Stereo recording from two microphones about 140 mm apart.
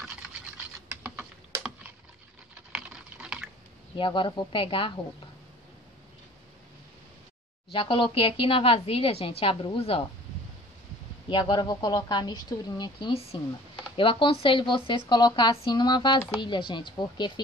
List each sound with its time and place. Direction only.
0.7 s typing: 15° right (ahead or behind)
3.9 s a woman's voice: 35° left (ahead or behind)
7.7 s a woman's voice: 40° left (ahead or behind)
11.2 s a woman's voice: 35° left (ahead or behind)